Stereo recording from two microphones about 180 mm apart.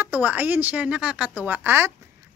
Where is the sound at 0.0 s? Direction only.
10° right (ahead or behind).